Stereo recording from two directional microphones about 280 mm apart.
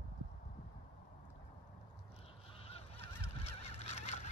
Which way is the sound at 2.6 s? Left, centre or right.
Left.